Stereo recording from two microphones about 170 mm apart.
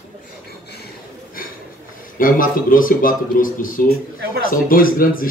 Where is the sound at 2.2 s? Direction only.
55° left (ahead or behind).